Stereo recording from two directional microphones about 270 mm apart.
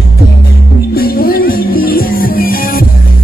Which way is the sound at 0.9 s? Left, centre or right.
Left.